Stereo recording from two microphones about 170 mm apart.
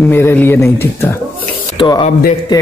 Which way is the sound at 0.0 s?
10° left (ahead or behind).